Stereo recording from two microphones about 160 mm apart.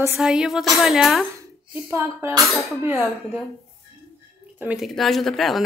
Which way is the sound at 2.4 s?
Centre (ahead or behind).